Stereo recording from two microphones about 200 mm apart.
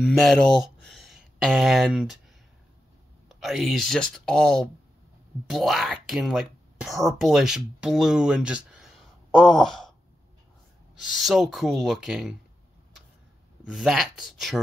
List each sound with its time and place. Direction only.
0.0 s speech: centre (ahead or behind)
3.3 s speech: centre (ahead or behind)
11.0 s speech: centre (ahead or behind)
13.7 s speech: centre (ahead or behind)